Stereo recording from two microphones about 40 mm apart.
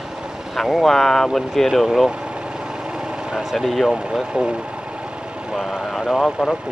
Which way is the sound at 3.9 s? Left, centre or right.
Centre.